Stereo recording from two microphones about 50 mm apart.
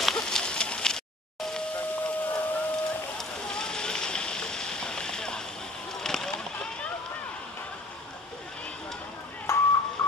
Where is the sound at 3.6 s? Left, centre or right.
Centre.